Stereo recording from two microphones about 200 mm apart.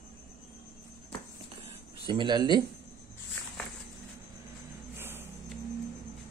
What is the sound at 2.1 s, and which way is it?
Speech, 25° right (ahead or behind).